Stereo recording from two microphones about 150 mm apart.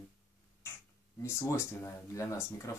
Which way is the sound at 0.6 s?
15° left (ahead or behind).